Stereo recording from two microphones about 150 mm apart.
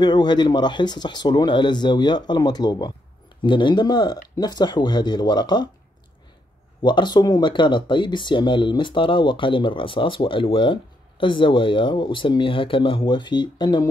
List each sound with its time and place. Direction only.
0.0 s speech: 30° left (ahead or behind)
6.8 s speech: 30° left (ahead or behind)